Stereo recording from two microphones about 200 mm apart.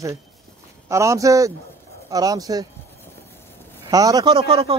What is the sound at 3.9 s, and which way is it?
Speech, 15° right (ahead or behind).